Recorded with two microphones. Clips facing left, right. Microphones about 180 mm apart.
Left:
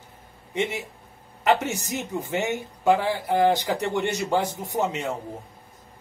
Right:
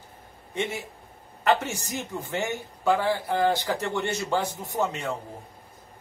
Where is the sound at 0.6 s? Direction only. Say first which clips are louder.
Left 3 dB; 20° left (ahead or behind).